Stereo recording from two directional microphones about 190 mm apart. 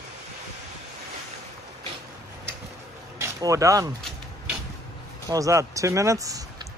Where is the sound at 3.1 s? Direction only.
15° right (ahead or behind).